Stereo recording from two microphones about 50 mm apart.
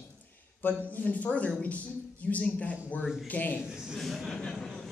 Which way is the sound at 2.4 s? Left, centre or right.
Left.